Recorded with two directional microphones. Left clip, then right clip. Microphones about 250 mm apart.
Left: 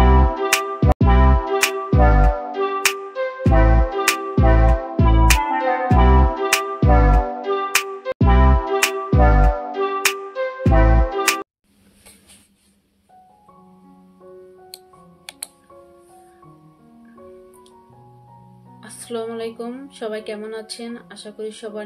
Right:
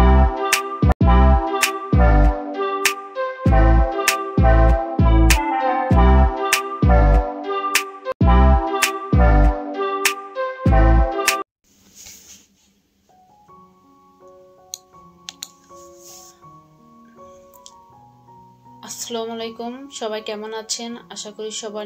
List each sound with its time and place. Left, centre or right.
0.0 s music: centre
18.8 s speech: centre